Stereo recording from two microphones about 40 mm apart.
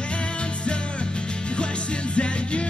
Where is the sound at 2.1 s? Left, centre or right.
Left.